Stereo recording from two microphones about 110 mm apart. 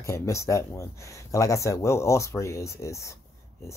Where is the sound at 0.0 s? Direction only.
25° left (ahead or behind).